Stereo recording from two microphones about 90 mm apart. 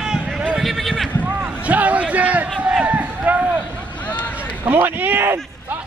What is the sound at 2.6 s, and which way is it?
Run, 15° right (ahead or behind).